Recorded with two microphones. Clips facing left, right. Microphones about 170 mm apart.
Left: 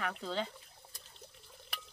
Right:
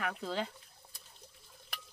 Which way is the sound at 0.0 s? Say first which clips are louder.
Right 1 dB; 5° right (ahead or behind).